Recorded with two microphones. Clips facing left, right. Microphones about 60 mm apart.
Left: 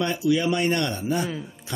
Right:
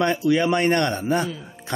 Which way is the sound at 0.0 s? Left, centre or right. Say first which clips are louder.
Right 3 dB; right.